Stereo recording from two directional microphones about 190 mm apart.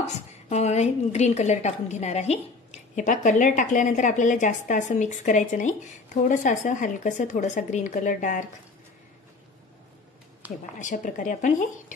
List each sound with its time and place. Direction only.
0.5 s a woman's voice: 35° left (ahead or behind)
10.8 s a woman's voice: 40° left (ahead or behind)